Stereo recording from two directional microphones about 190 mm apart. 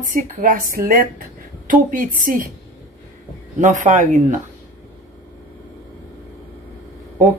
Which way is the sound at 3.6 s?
40° right (ahead or behind).